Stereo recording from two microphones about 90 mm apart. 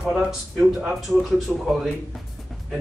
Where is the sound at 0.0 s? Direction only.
5° right (ahead or behind).